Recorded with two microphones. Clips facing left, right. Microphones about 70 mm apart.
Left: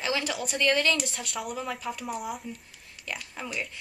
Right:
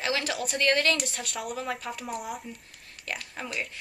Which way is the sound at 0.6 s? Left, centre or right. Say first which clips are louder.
Even; right.